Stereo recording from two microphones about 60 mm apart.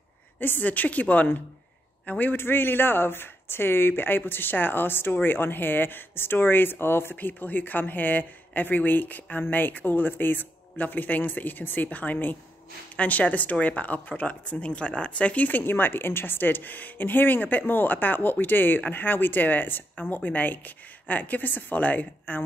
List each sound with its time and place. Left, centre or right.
0.4 s speech: left